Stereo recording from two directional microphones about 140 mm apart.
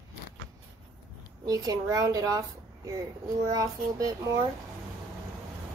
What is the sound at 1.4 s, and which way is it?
A woman's voice, 30° right (ahead or behind).